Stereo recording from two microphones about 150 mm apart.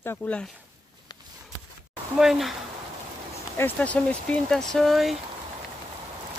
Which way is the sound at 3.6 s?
10° left (ahead or behind).